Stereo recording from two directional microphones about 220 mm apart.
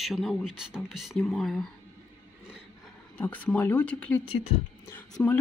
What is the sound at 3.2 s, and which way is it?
Speech, 5° left (ahead or behind).